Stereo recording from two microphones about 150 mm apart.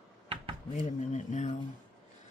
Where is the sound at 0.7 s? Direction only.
55° left (ahead or behind).